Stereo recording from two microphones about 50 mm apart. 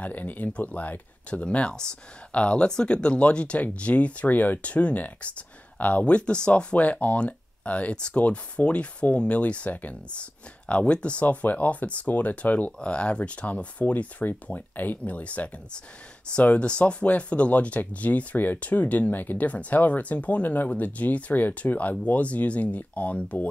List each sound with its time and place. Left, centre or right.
0.0 s speech: left
1.4 s speech: left
10.7 s speech: left